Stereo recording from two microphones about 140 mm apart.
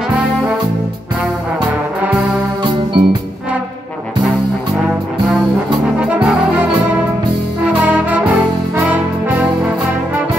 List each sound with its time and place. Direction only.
2.6 s music: 35° right (ahead or behind)
6.0 s brass instrument: 10° right (ahead or behind)